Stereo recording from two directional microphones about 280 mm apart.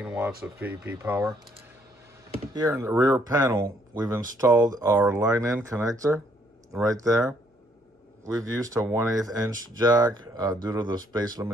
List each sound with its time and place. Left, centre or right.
0.0 s speech: centre
2.5 s speech: centre
8.4 s speech: centre